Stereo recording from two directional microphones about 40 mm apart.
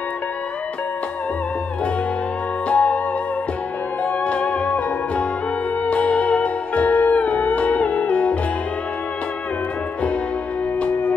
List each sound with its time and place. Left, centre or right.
2.7 s music: left
4.2 s music: left
10.8 s music: left